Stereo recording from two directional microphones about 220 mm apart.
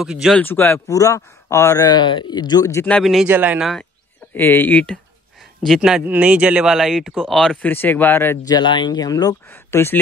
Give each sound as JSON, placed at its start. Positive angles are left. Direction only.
{"t": 0.0, "sound": "speech", "side_deg": 0}
{"t": 4.3, "sound": "speech", "side_deg": 10}